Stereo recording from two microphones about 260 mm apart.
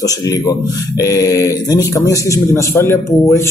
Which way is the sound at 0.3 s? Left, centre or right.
Centre.